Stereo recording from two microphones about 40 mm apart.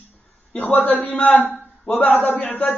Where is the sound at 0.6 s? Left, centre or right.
Left.